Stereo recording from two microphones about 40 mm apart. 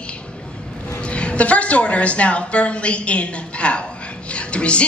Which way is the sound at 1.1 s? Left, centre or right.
Left.